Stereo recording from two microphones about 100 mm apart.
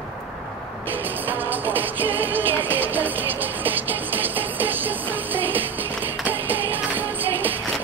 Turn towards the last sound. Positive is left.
turn(degrees=-20)  # may be behind; listen again after turning